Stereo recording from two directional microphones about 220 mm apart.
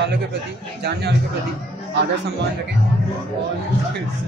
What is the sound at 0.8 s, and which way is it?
Speech, 50° right (ahead or behind).